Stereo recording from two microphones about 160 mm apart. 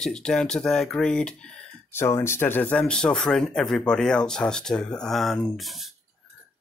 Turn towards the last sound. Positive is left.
turn(degrees=0)  # may be behind; listen again after turning